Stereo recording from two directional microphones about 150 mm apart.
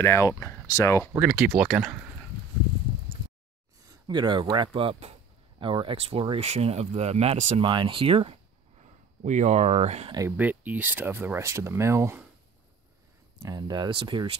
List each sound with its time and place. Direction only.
0.0 s speech: 20° left (ahead or behind)
1.2 s speech: 10° right (ahead or behind)
3.8 s speech: 30° right (ahead or behind); by 7.6 s 45° right (ahead or behind)
7.6 s speech: 35° right (ahead or behind)
8.8 s speech: 50° right (ahead or behind)
10.3 s speech: 10° right (ahead or behind)
13.4 s speech: 25° right (ahead or behind)